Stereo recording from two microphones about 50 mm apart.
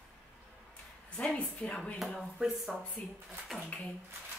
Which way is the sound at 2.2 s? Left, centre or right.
Centre.